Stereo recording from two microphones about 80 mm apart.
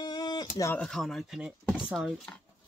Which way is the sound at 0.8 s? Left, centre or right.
Centre.